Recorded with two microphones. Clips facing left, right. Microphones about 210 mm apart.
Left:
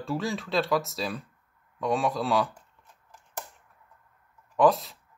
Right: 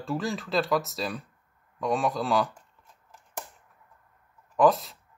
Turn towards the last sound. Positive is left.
turn(degrees=0)  # may be behind; listen again after turning